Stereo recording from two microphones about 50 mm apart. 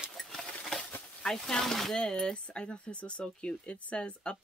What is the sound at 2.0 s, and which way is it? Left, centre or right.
Speech, centre.